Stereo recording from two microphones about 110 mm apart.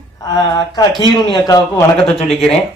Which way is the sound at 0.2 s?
35° left (ahead or behind).